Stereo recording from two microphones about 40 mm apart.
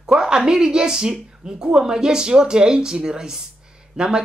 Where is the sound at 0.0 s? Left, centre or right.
Centre.